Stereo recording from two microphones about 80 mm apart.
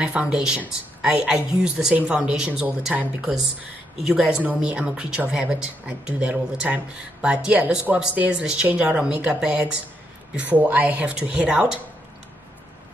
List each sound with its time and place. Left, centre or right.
0.0 s speech: centre
4.1 s speech: centre